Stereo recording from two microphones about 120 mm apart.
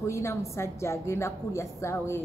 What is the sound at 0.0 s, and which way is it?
A woman's voice, 25° left (ahead or behind).